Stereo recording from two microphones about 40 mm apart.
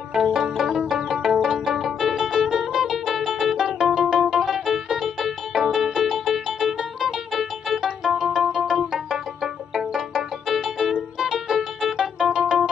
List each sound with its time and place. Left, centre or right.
0.1 s music: centre